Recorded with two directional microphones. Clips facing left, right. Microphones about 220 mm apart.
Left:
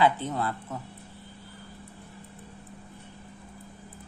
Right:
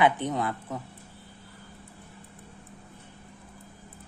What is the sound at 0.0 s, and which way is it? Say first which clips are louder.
Speech: right 1 dB; 15° right (ahead or behind).